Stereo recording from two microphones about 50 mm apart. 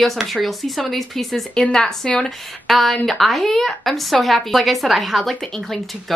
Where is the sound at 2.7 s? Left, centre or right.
Centre.